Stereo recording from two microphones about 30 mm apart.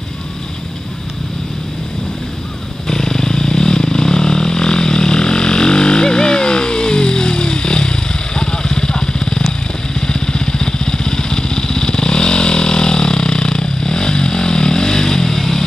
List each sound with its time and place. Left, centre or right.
2.9 s vehicle: centre